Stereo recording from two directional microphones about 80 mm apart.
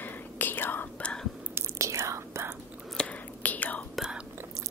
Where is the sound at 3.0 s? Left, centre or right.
Centre.